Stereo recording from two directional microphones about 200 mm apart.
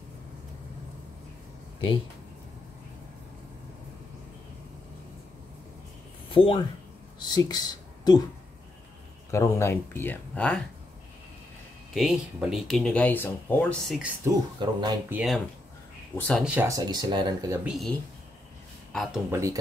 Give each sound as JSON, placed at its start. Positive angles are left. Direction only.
{"t": 6.3, "sound": "speech", "side_deg": 25}
{"t": 9.3, "sound": "speech", "side_deg": 15}
{"t": 11.9, "sound": "speech", "side_deg": 0}
{"t": 14.2, "sound": "speech", "side_deg": -15}
{"t": 15.0, "sound": "speech", "side_deg": -5}
{"t": 16.4, "sound": "speech", "side_deg": -10}
{"t": 17.6, "sound": "speech", "side_deg": 0}
{"t": 19.3, "sound": "speech", "side_deg": -15}